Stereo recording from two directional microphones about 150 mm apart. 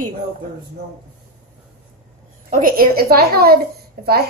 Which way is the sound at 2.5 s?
70° right (ahead or behind).